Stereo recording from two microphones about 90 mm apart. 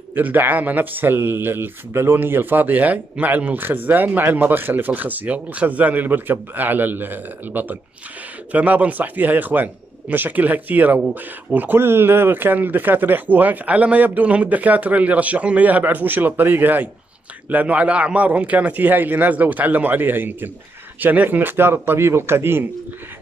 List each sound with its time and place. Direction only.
0.1 s speech: 20° right (ahead or behind)